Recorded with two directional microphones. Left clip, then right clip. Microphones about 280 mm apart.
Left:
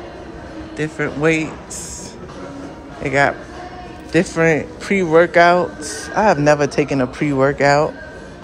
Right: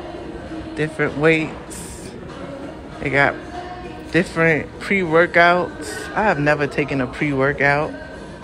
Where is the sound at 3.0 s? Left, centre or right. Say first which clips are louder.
Left 1 dB; centre.